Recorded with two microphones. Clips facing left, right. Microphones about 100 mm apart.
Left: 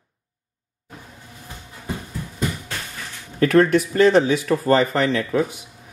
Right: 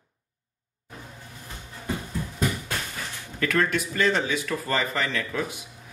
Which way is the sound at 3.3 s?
35° left (ahead or behind).